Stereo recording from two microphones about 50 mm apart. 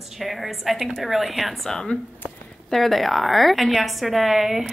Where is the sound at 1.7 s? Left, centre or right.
Centre.